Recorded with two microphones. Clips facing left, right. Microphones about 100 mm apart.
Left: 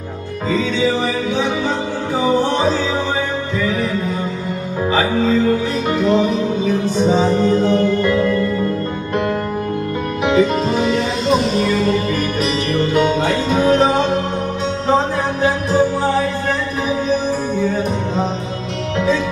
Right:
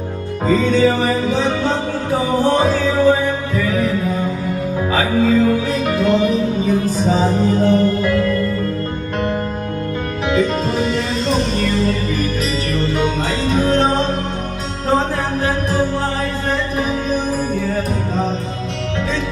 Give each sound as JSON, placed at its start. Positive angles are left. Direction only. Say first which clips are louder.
{"t": 5.9, "sound": "music", "louder": "left 1 dB", "side_deg": 0}
{"t": 10.3, "sound": "music", "louder": "left 2 dB", "side_deg": 0}
{"t": 13.5, "sound": "music", "louder": "left 1 dB", "side_deg": 5}